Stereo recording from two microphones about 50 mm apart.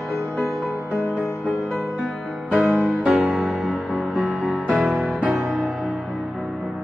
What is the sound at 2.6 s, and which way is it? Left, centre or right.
Music, right.